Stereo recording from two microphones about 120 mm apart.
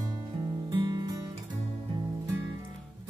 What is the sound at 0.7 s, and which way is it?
Music, 35° right (ahead or behind).